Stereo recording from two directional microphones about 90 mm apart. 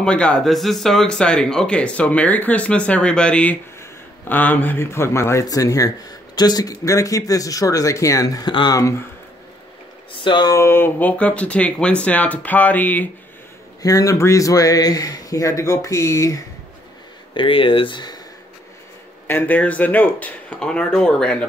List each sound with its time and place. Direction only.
0.0 s speech: 10° left (ahead or behind); by 8.5 s 40° left (ahead or behind)
8.5 s speech: 60° left (ahead or behind)
8.7 s speech: 35° left (ahead or behind)
10.1 s speech: 60° left (ahead or behind)
10.5 s speech: 30° left (ahead or behind)
13.8 s speech: 40° left (ahead or behind)
17.3 s speech: 75° left (ahead or behind); by 18.2 s 55° left (ahead or behind)
19.2 s a man's voice: 20° left (ahead or behind)